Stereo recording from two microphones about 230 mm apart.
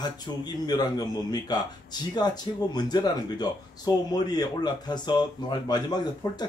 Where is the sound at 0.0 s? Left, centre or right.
Centre.